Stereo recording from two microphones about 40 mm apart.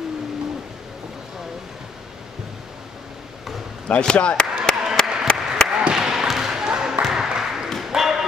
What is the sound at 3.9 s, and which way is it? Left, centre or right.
Speech, left.